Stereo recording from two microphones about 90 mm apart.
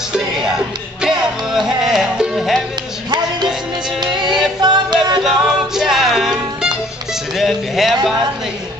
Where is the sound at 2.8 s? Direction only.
55° right (ahead or behind).